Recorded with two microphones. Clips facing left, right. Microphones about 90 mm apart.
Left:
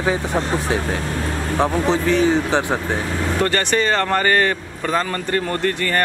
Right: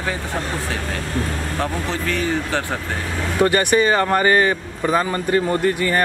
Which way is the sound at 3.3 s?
10° right (ahead or behind).